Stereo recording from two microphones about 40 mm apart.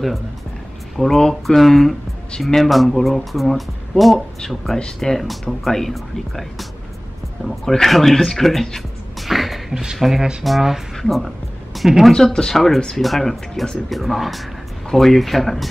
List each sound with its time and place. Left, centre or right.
0.9 s speech: centre
4.7 s speech: left
5.1 s speech: centre
7.8 s music: centre
9.9 s speech: centre
11.0 s music: centre
12.1 s speech: centre